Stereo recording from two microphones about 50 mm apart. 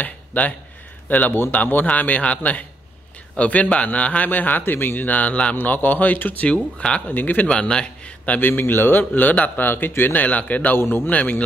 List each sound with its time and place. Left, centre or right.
0.0 s a man's voice: left
4.3 s a man's voice: left
6.4 s a man's voice: left
7.1 s a man's voice: left
7.4 s a man's voice: centre
8.4 s a man's voice: left
9.7 s speech: left
10.2 s a man's voice: left
10.8 s speech: left
11.1 s a man's voice: left